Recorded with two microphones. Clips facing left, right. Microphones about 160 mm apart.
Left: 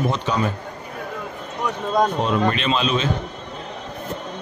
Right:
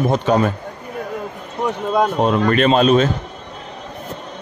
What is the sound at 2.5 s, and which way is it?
Speech, 50° right (ahead or behind).